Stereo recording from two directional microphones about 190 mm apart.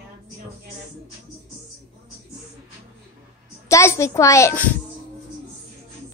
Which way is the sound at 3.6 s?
15° left (ahead or behind).